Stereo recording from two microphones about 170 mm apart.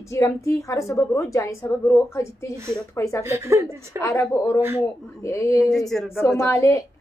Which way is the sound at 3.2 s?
15° right (ahead or behind).